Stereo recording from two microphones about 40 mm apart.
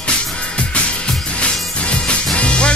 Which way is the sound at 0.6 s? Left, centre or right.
Left.